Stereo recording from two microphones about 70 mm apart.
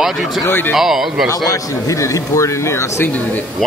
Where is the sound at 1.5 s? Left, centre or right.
Left.